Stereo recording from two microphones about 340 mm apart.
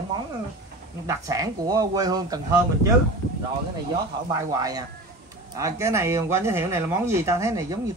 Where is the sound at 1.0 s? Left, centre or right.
Centre.